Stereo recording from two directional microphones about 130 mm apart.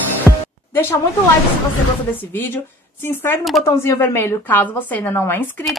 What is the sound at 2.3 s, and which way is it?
Speech, 15° left (ahead or behind).